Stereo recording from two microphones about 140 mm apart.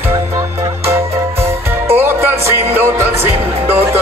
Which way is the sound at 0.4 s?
15° right (ahead or behind).